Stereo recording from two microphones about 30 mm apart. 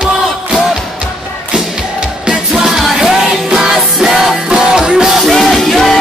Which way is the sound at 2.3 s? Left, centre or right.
Centre.